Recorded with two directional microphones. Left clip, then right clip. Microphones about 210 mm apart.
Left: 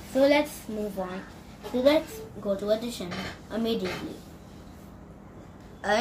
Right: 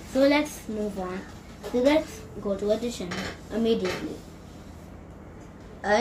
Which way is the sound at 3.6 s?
Centre (ahead or behind).